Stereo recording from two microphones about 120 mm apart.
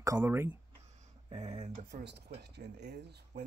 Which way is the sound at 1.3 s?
65° right (ahead or behind).